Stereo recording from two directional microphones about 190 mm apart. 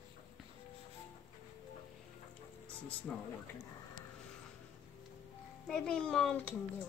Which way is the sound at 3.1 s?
5° left (ahead or behind).